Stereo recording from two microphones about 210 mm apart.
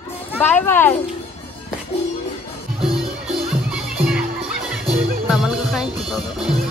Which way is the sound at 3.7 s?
Centre (ahead or behind).